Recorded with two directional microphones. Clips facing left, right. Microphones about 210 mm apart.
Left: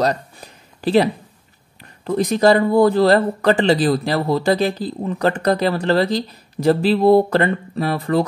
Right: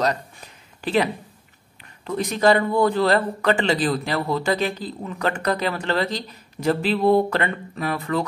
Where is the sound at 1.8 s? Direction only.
35° left (ahead or behind).